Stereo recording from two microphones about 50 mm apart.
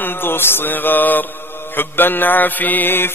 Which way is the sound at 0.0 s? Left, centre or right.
Left.